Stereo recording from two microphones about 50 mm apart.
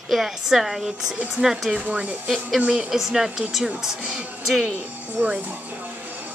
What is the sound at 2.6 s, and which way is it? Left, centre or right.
Speech, centre.